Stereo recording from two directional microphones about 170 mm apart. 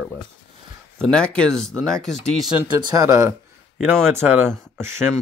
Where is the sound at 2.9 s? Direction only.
20° right (ahead or behind).